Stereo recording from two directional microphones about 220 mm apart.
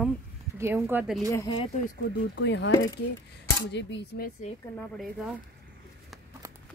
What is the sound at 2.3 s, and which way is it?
Speech, 55° left (ahead or behind).